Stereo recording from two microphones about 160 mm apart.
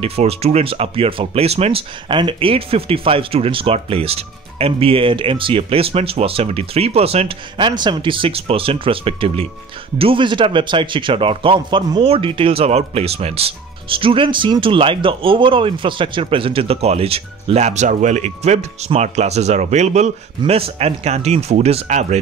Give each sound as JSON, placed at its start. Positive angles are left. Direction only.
{"t": 0.0, "sound": "speech", "side_deg": -40}